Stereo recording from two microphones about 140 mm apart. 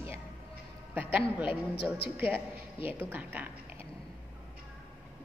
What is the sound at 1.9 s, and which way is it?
A woman's voice, 15° right (ahead or behind).